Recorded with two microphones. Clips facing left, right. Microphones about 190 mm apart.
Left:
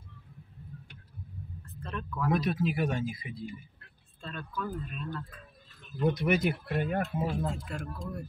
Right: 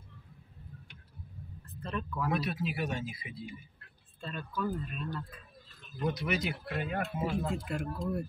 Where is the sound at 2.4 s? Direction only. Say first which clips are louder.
Left 5 dB; 45° left (ahead or behind).